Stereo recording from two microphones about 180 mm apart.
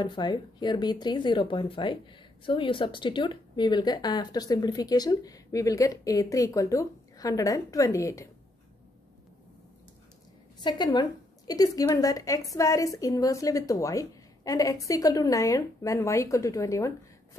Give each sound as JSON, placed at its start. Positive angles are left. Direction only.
{"t": 0.0, "sound": "a woman's voice", "side_deg": 25}
{"t": 10.6, "sound": "a woman's voice", "side_deg": 25}